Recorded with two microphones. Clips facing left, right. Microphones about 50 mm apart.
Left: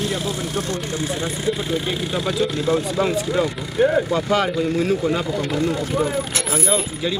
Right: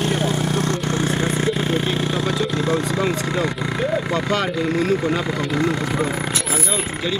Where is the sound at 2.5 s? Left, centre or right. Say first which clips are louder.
Even; right.